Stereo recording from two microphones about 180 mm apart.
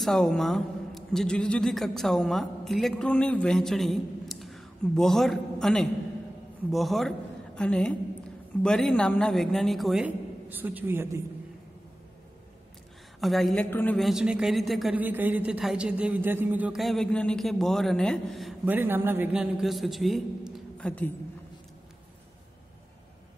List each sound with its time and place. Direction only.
0.0 s a man's voice: centre (ahead or behind); by 11.2 s 15° right (ahead or behind)
13.2 s a man's voice: centre (ahead or behind)
13.7 s a man's voice: 10° left (ahead or behind)
13.9 s a man's voice: centre (ahead or behind)
18.7 s a man's voice: 10° right (ahead or behind); by 21.1 s 10° left (ahead or behind)